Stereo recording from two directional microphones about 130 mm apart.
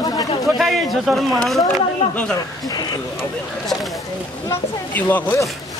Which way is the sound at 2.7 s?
30° left (ahead or behind).